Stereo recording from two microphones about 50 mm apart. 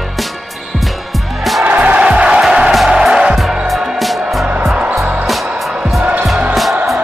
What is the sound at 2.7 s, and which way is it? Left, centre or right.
Music, centre.